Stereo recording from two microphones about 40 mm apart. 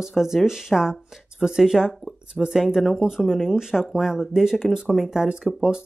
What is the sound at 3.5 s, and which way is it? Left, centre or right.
Speech, centre.